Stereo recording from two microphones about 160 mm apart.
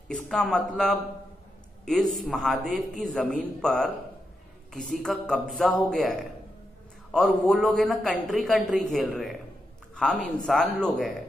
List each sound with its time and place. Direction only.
0.1 s a man's voice: 5° left (ahead or behind)